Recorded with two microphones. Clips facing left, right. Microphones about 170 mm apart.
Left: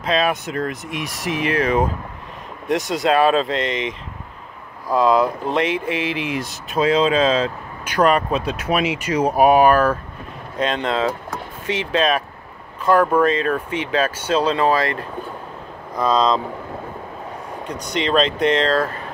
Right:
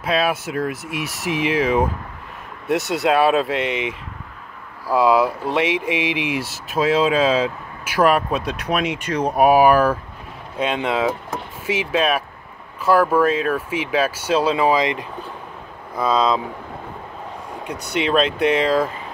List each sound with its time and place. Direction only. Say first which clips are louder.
0.0 s speech: even; 5° right (ahead or behind)
17.9 s speech: even; 5° right (ahead or behind)